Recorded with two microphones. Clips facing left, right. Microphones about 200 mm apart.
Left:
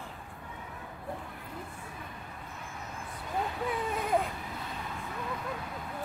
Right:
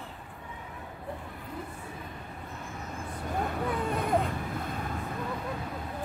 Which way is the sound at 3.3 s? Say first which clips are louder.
Right 2 dB; 50° right (ahead or behind).